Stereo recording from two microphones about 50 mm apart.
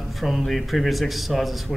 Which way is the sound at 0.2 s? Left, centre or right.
Centre.